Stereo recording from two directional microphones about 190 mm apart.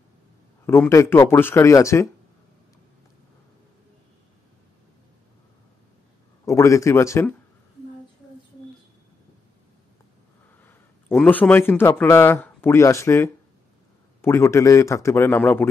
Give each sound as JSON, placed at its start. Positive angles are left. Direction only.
{"t": 0.7, "sound": "speech", "side_deg": 15}
{"t": 6.4, "sound": "speech", "side_deg": 15}
{"t": 10.6, "sound": "a man's voice", "side_deg": 10}